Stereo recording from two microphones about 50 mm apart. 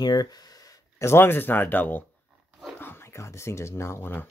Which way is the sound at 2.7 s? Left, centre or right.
Left.